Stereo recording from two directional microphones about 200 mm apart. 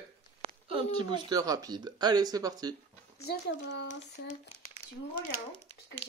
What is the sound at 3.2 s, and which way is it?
Speech, 55° left (ahead or behind).